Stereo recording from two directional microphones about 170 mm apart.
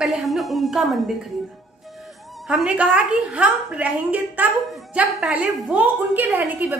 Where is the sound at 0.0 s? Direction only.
Centre (ahead or behind).